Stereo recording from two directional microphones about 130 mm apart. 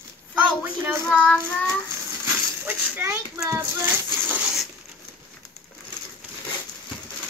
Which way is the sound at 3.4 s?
20° right (ahead or behind).